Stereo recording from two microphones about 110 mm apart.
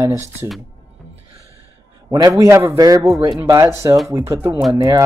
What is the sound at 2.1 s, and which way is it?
A man's voice, 35° right (ahead or behind).